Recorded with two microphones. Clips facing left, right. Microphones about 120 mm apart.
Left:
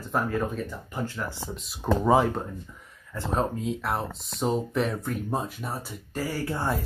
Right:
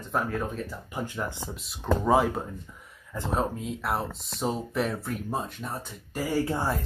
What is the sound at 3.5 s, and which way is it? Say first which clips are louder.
Speech: left 1 dB; centre (ahead or behind).